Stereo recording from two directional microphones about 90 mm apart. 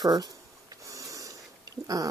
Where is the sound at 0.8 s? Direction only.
35° right (ahead or behind).